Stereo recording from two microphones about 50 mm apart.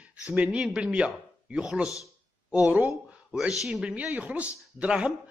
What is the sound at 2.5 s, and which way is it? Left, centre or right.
Speech, right.